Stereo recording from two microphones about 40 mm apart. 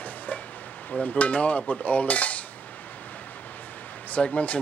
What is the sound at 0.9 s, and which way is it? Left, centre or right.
Cutlery, left.